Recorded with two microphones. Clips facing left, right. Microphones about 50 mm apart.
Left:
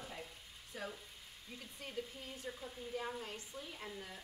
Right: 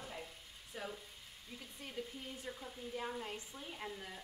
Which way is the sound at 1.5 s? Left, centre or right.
Centre.